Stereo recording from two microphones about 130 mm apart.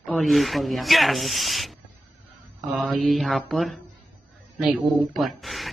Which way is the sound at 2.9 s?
Centre (ahead or behind).